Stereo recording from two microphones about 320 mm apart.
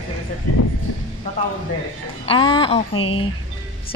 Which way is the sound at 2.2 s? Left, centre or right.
Centre.